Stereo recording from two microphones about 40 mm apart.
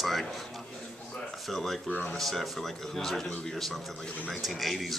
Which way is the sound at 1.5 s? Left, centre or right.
Centre.